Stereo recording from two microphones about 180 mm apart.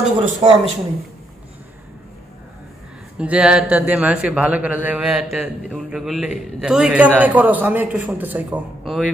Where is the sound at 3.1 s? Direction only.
5° right (ahead or behind).